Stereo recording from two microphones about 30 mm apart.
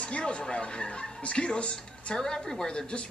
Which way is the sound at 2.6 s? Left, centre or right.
Left.